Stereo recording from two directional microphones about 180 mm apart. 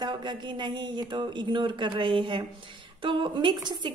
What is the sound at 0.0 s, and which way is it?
A man's voice, 25° right (ahead or behind).